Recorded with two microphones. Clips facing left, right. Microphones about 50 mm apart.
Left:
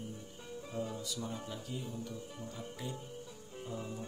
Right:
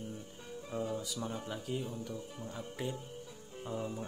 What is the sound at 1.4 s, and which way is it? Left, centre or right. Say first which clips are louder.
Speech: right 4 dB; right.